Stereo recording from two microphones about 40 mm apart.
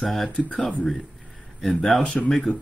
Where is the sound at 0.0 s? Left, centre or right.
Centre.